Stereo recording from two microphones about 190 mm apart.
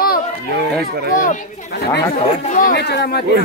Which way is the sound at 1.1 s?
45° left (ahead or behind).